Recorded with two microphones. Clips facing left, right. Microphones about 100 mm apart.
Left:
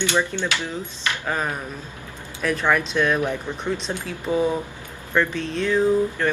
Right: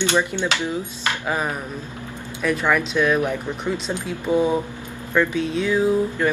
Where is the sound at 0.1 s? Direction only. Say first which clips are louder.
Right 2 dB; 15° right (ahead or behind).